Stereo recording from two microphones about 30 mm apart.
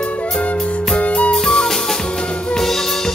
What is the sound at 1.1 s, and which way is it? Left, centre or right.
Music, left.